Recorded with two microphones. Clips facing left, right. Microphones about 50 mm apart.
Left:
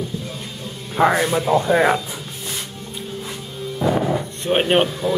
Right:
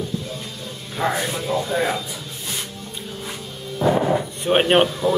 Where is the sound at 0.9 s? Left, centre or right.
Left.